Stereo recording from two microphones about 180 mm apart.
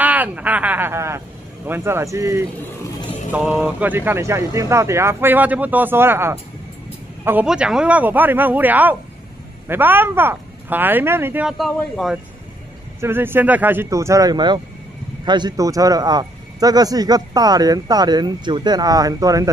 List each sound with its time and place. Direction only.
0.0 s speech: 10° right (ahead or behind)
13.0 s a man's voice: 10° right (ahead or behind)